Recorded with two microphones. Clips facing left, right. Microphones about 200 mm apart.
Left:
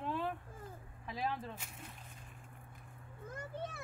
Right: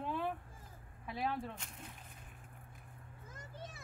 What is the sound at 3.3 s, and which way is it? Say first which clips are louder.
Speech: left 8 dB; 60° left (ahead or behind).